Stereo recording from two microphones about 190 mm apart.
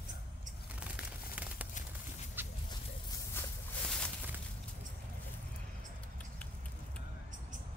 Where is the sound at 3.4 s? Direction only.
10° left (ahead or behind).